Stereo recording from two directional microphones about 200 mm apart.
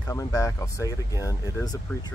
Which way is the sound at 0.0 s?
15° left (ahead or behind).